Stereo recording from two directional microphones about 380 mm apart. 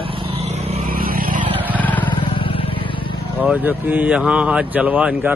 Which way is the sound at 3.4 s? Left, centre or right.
Centre.